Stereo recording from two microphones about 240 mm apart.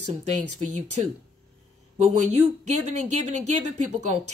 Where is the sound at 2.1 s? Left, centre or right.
Right.